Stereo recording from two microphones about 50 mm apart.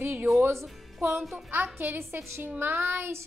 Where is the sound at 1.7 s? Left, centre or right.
Right.